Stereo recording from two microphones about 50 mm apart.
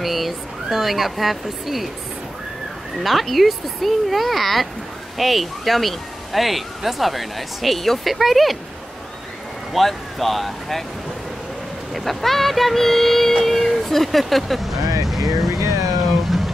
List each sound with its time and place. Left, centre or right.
0.0 s speech: centre
3.0 s speech: centre
9.7 s speech: centre
11.9 s speech: centre
15.6 s a sound: right